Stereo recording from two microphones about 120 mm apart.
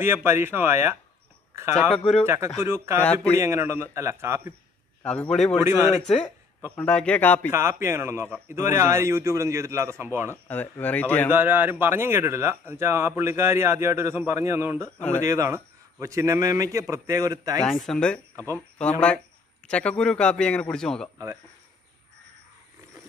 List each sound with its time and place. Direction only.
0.0 s a man's voice: 20° right (ahead or behind)
1.5 s a sound: 25° right (ahead or behind)
1.8 s speech: 5° left (ahead or behind)
2.2 s a man's voice: 20° right (ahead or behind)
5.0 s a man's voice: 10° left (ahead or behind)
5.6 s a man's voice: 20° right (ahead or behind)
6.8 s a man's voice: 10° left (ahead or behind)
7.5 s a man's voice: 20° right (ahead or behind)
10.3 s a man's voice: 15° left (ahead or behind)
11.3 s a man's voice: 15° right (ahead or behind)
17.6 s a man's voice: 5° left (ahead or behind)